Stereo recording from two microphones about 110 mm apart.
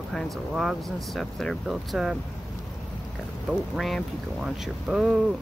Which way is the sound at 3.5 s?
Centre (ahead or behind).